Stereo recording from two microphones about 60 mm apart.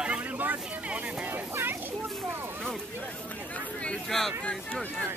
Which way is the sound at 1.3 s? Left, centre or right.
Right.